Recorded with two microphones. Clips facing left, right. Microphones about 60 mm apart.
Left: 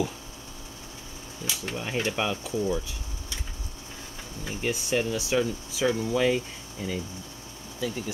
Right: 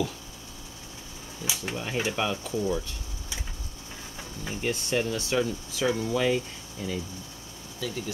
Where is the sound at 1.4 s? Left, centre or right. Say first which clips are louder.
Even; centre.